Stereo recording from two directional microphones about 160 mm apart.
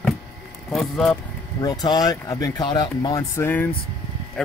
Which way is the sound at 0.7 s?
Centre (ahead or behind).